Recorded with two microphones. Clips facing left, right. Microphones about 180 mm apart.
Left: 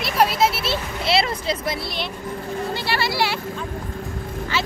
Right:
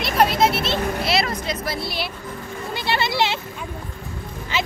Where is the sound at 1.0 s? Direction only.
30° left (ahead or behind).